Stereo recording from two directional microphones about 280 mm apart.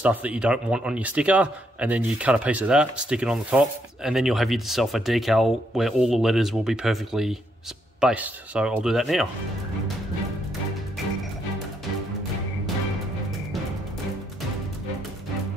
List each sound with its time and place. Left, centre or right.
0.0 s speech: centre